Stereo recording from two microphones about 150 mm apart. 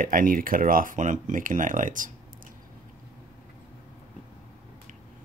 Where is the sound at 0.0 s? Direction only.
65° right (ahead or behind).